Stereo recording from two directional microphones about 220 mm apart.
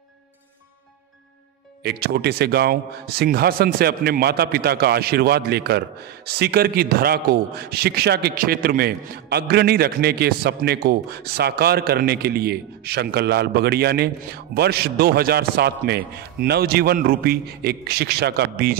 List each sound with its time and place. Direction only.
1.8 s a man's voice: 45° right (ahead or behind)